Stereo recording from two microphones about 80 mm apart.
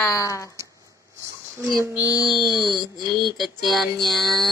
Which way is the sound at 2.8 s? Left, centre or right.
Left.